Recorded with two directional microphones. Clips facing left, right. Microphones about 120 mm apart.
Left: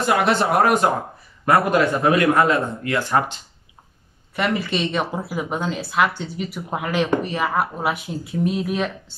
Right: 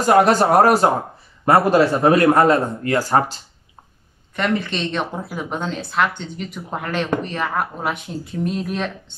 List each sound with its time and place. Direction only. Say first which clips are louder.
0.0 s a man's voice: right 5 dB; 40° right (ahead or behind)
4.4 s speech: even; 5° left (ahead or behind)